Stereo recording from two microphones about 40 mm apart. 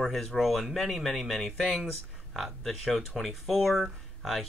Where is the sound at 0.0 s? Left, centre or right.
Centre.